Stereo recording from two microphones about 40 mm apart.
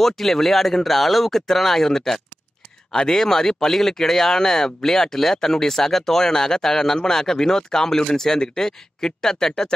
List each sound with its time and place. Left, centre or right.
0.0 s speech: centre